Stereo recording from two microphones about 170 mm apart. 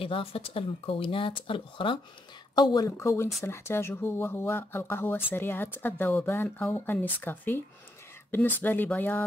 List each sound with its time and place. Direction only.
0.0 s speech: 30° left (ahead or behind); by 9.2 s 10° left (ahead or behind)